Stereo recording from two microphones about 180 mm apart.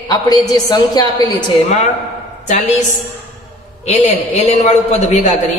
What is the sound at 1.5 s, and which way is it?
Speech, 40° left (ahead or behind).